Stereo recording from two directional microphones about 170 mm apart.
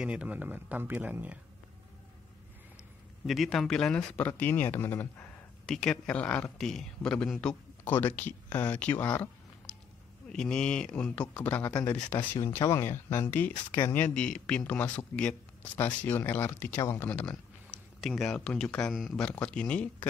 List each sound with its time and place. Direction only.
0.0 s speech: 5° right (ahead or behind)
3.3 s speech: centre (ahead or behind)
10.3 s speech: 5° left (ahead or behind)
12.2 s speech: 25° left (ahead or behind)
12.5 s speech: 15° left (ahead or behind)